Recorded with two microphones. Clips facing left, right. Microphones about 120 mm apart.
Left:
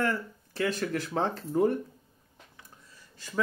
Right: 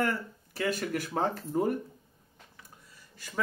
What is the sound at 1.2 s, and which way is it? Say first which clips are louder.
Speech: left 2 dB; 40° right (ahead or behind).